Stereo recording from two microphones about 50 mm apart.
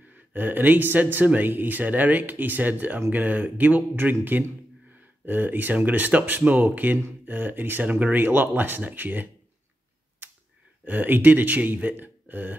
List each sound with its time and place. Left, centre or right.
0.1 s speech: right
7.9 s speech: right
8.2 s speech: right
10.9 s speech: right